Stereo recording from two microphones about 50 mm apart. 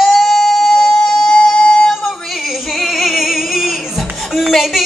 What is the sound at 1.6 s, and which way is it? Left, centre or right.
Singing, left.